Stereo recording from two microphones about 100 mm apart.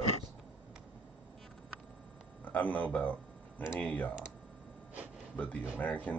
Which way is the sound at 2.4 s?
15° left (ahead or behind).